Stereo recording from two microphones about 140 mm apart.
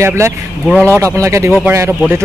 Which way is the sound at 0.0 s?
20° right (ahead or behind).